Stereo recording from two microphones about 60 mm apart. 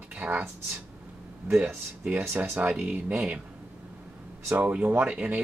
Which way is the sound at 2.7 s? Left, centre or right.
Centre.